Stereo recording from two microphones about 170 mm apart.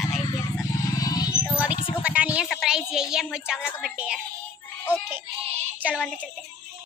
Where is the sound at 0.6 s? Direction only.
20° left (ahead or behind).